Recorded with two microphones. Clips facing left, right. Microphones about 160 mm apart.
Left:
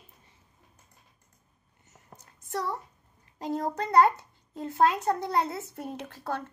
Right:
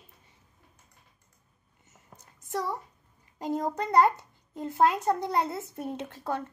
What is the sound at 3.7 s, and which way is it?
A child's voice, 15° right (ahead or behind).